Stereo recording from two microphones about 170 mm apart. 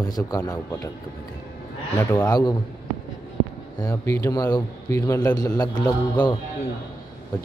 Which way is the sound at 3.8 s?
20° left (ahead or behind).